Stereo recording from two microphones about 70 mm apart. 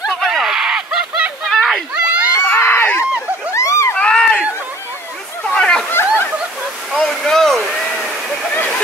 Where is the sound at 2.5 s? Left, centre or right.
Left.